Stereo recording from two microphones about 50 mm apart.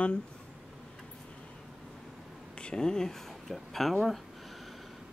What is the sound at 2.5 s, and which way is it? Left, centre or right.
Speech, centre.